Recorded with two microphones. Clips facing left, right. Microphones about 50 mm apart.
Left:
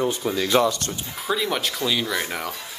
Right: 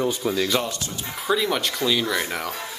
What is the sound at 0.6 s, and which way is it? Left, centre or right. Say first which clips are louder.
Speech: left 7 dB; left.